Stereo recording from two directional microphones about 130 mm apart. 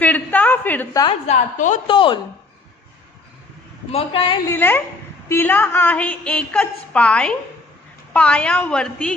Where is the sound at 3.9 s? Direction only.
45° left (ahead or behind).